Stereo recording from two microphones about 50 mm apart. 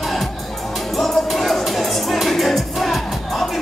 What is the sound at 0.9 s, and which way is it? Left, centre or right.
Music, centre.